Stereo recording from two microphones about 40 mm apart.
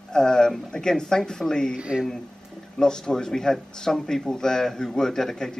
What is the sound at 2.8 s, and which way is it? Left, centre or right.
Speech, centre.